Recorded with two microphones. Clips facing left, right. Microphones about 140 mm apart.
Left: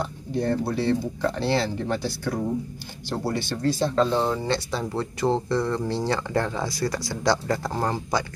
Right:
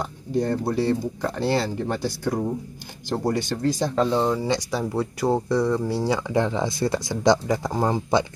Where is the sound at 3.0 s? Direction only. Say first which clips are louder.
Right 3 dB; 15° right (ahead or behind).